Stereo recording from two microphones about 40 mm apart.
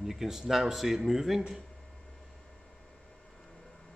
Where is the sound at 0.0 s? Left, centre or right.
Centre.